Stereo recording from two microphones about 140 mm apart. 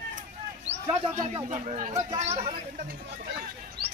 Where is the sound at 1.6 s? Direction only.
55° right (ahead or behind).